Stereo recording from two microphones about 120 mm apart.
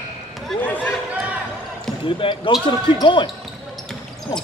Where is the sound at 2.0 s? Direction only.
45° left (ahead or behind).